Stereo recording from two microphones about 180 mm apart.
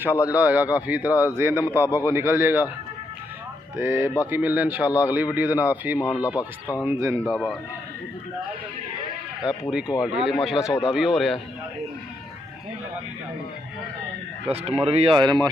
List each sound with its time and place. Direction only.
0.3 s speech: 10° right (ahead or behind)
3.7 s speech: 15° right (ahead or behind)
5.9 s speech: 20° left (ahead or behind)
6.8 s speech: 15° right (ahead or behind)
7.2 s speech: centre (ahead or behind)
9.5 s speech: 5° right (ahead or behind)
14.4 s speech: 35° right (ahead or behind)